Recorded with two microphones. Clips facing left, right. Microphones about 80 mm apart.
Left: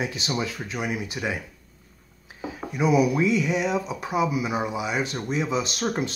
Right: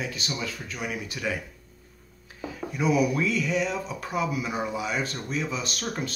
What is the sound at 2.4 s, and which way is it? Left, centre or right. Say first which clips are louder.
Speech: left 2 dB; centre.